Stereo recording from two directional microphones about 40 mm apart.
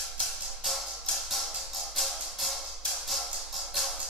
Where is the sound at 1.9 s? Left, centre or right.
Centre.